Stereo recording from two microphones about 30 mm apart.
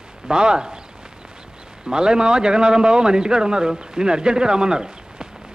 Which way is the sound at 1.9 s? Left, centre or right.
Right.